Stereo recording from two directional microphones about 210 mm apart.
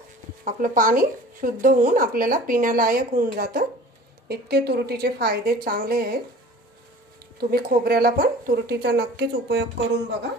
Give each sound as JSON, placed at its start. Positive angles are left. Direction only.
{"t": 0.5, "sound": "speech", "side_deg": -40}
{"t": 7.3, "sound": "speech", "side_deg": -45}